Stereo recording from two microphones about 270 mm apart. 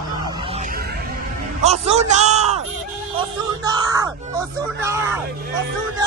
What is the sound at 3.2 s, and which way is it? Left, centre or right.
Speech, centre.